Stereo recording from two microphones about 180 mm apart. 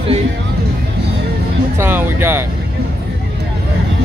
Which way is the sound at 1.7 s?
10° right (ahead or behind).